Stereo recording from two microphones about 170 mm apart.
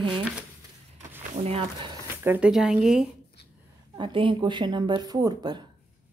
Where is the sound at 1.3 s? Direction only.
35° right (ahead or behind).